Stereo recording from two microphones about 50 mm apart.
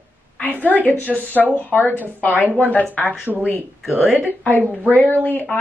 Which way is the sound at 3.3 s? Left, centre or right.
Centre.